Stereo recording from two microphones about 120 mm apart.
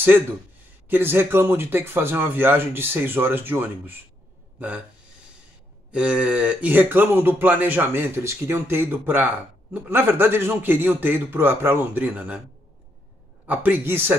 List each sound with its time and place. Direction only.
0.8 s speech: 20° right (ahead or behind)
5.9 s speech: 10° right (ahead or behind)
13.5 s speech: 15° right (ahead or behind)